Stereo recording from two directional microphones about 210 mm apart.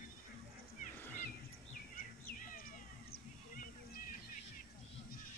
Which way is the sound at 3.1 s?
45° left (ahead or behind).